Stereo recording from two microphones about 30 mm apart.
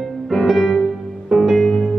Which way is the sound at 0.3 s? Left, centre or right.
Centre.